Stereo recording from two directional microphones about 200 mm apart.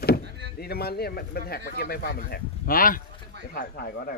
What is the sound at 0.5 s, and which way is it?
Speech, 50° left (ahead or behind).